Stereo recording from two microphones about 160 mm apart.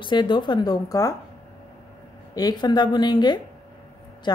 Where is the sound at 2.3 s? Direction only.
25° left (ahead or behind).